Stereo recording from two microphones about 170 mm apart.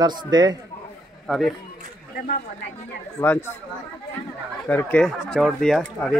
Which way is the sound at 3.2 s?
15° left (ahead or behind).